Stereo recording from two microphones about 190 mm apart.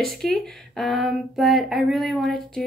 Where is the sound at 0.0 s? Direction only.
Centre (ahead or behind).